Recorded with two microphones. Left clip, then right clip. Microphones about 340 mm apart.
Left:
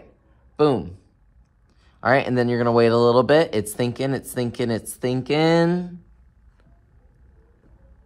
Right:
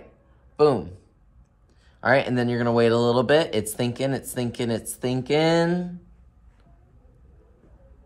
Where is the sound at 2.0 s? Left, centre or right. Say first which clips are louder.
Left 2 dB; centre.